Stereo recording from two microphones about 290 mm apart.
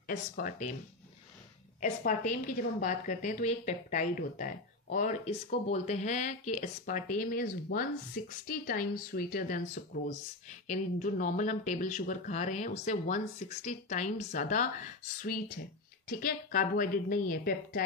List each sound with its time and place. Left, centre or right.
0.0 s speech: left
1.8 s speech: left
10.7 s speech: left